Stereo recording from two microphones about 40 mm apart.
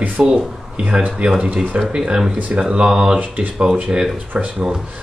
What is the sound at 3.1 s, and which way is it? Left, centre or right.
Speech, right.